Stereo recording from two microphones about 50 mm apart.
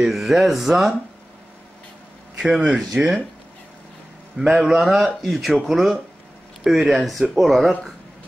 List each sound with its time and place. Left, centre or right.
0.0 s speech: centre
2.3 s a sound: centre
2.9 s speech: right
4.4 s speech: centre